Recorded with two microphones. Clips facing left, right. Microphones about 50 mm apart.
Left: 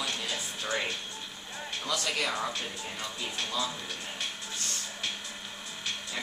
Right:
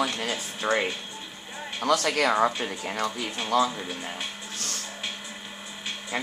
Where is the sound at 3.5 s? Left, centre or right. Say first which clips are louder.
Right 12 dB; right.